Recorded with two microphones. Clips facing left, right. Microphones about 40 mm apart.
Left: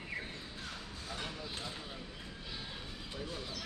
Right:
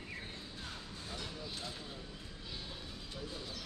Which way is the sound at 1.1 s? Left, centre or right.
Left.